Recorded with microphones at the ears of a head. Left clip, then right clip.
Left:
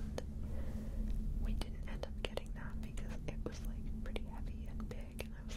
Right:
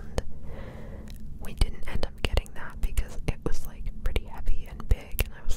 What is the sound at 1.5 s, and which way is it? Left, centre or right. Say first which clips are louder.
Whispering: right 14 dB; right.